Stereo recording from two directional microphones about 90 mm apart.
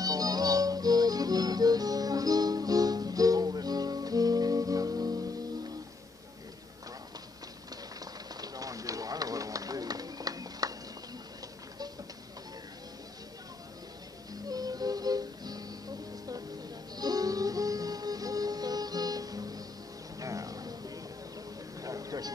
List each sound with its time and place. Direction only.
0.0 s music: 45° right (ahead or behind)
8.0 s a sound: 45° right (ahead or behind)
14.5 s music: 45° right (ahead or behind)
16.9 s music: 45° right (ahead or behind)
20.2 s a sound: 40° right (ahead or behind)
21.8 s vehicle: 40° right (ahead or behind)